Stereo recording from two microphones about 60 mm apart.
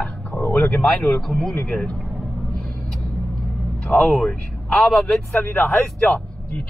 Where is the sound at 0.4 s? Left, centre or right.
Left.